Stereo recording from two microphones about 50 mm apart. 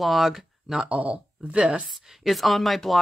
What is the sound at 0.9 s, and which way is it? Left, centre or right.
Speech, right.